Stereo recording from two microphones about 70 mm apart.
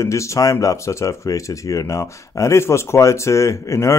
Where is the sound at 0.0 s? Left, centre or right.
Left.